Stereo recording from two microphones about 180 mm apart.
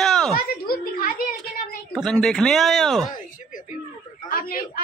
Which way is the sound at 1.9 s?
5° left (ahead or behind).